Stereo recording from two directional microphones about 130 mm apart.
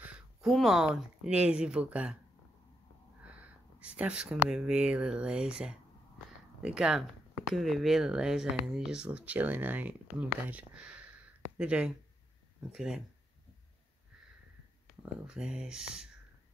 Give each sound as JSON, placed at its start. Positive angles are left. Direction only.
{"t": 0.4, "sound": "speech", "side_deg": 0}
{"t": 3.8, "sound": "speech", "side_deg": -10}
{"t": 15.2, "sound": "speech", "side_deg": -5}